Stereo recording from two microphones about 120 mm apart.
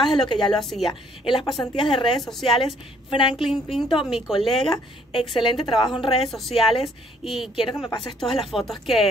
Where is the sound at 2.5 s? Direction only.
50° left (ahead or behind).